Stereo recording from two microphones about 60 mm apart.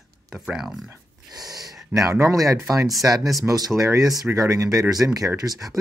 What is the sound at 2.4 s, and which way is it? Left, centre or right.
Speech, right.